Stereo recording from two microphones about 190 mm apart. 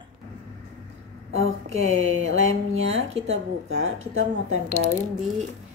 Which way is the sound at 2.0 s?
90° right.